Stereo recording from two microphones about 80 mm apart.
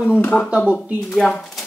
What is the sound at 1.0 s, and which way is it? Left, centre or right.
Speech, centre.